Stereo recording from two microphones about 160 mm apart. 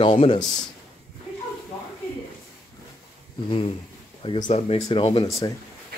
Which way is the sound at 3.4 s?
35° left (ahead or behind).